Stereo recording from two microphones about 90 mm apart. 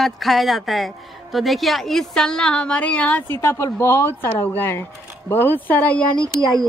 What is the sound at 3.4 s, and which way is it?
A woman's voice, 30° left (ahead or behind).